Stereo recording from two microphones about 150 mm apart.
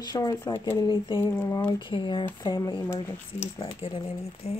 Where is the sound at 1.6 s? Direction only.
30° left (ahead or behind).